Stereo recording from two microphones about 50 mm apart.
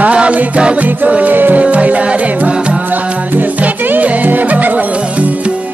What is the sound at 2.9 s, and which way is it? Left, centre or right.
Music, right.